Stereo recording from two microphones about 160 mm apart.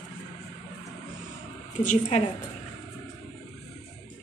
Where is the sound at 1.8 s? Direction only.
50° left (ahead or behind).